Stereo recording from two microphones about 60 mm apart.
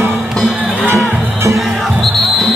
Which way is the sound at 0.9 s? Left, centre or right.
Right.